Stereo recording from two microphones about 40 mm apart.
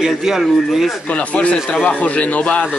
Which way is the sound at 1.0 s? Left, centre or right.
Left.